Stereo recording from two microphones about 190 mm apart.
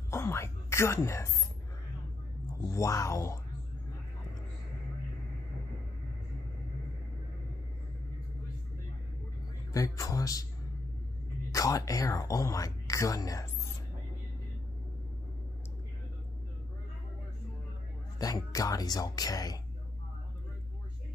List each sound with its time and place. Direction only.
0.1 s speech: 15° left (ahead or behind)
2.7 s speech: 15° left (ahead or behind)
9.7 s speech: 15° left (ahead or behind)
11.5 s speech: 15° left (ahead or behind)
18.2 s speech: 20° left (ahead or behind)